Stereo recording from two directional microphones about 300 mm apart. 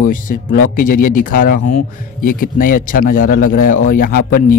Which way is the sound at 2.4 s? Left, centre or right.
Left.